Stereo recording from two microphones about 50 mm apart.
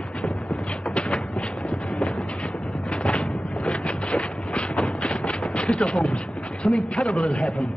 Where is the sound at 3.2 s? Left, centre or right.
Centre.